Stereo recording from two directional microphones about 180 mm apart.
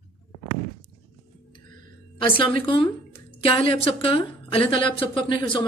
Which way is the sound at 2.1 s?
30° left (ahead or behind).